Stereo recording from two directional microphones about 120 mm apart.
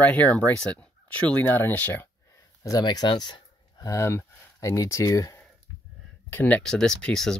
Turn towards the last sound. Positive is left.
turn(degrees=5)  # may be behind; listen again after turning